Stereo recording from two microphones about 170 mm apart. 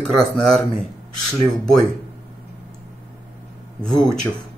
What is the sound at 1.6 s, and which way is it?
Speech, 5° left (ahead or behind).